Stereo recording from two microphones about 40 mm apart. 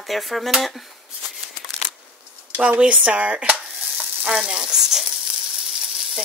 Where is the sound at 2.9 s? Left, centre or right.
Right.